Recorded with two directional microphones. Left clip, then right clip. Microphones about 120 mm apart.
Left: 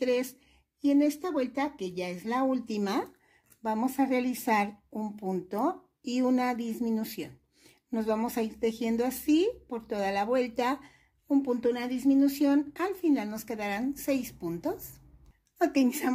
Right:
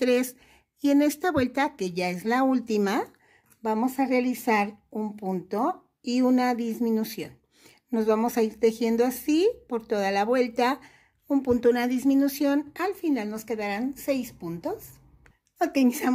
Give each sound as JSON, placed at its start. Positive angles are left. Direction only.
{"t": 0.0, "sound": "speech", "side_deg": -65}
{"t": 3.6, "sound": "a woman's voice", "side_deg": -20}
{"t": 12.3, "sound": "speech", "side_deg": -30}
{"t": 15.6, "sound": "speech", "side_deg": -30}